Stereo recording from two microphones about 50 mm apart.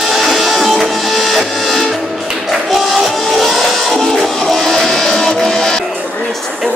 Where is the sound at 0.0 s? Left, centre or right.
Centre.